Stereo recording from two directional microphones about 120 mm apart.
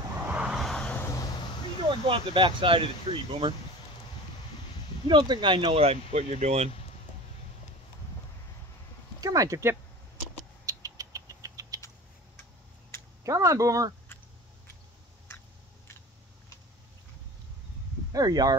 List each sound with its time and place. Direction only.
0.3 s vehicle: 5° right (ahead or behind)
0.9 s a sound: 25° left (ahead or behind)
2.0 s speech: 45° right (ahead or behind)
5.0 s speech: 40° right (ahead or behind); by 6.7 s 65° right (ahead or behind)
9.2 s speech: 30° right (ahead or behind)
10.6 s rodents: 30° right (ahead or behind)
13.2 s speech: 25° right (ahead or behind)
18.1 s speech: 35° right (ahead or behind)